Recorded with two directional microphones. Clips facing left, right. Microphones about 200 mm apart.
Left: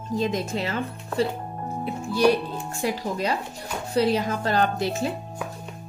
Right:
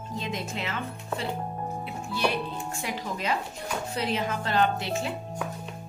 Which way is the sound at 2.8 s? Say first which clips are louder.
Left 9 dB; 35° left (ahead or behind).